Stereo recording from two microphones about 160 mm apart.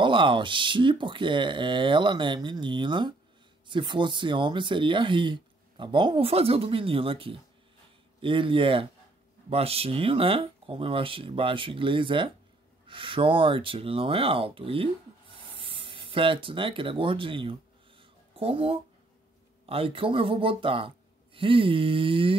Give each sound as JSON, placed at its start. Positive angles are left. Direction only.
{"t": 0.0, "sound": "speech", "side_deg": -30}